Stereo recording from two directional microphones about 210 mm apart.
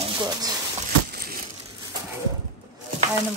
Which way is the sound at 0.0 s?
20° right (ahead or behind).